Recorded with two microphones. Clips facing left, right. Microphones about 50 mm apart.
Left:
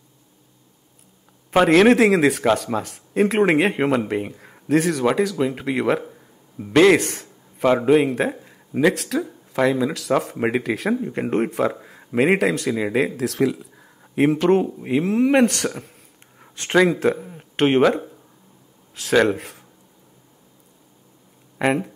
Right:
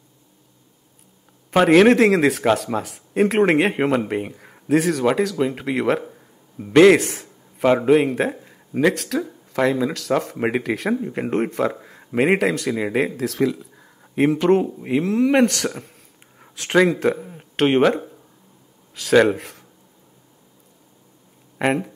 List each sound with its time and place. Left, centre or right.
1.6 s speech: centre
15.0 s speech: centre
15.3 s speech: centre
21.5 s speech: centre